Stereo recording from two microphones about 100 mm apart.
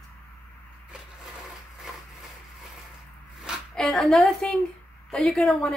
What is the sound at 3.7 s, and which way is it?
A woman's voice, 5° left (ahead or behind).